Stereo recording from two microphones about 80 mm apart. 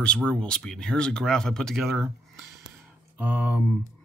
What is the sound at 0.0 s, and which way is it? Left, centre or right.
Speech, centre.